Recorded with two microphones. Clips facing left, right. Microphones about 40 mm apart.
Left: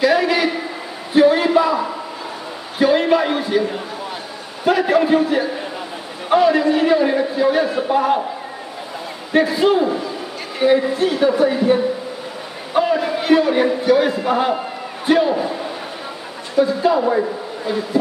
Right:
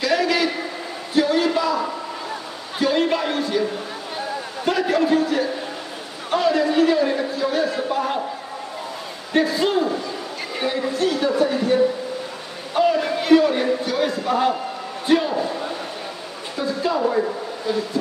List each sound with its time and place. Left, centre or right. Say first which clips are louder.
0.0 s a sound: left 4 dB; centre
2.8 s speech: left 5 dB; centre
4.6 s a man's voice: left 4 dB; centre
9.3 s a man's voice: left 4 dB; centre
16.6 s speech: left 1 dB; centre